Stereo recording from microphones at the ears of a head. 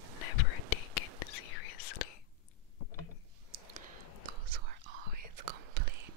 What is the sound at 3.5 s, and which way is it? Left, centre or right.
Whispering, right.